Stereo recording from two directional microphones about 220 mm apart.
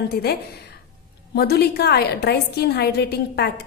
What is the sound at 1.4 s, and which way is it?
A woman's voice, 45° left (ahead or behind).